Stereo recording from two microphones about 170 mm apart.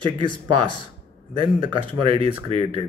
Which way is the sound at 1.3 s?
30° right (ahead or behind).